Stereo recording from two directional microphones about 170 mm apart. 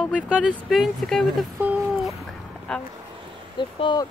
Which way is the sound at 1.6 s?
10° right (ahead or behind).